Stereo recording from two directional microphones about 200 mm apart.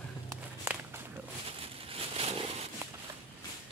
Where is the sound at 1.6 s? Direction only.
30° right (ahead or behind).